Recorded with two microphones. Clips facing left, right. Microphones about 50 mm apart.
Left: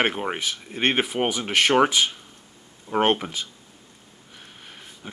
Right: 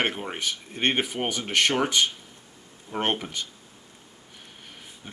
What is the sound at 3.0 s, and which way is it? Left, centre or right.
Speech, centre.